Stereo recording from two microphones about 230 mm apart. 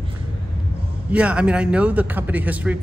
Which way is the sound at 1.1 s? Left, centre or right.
Centre.